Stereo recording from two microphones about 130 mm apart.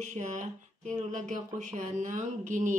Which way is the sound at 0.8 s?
65° right (ahead or behind).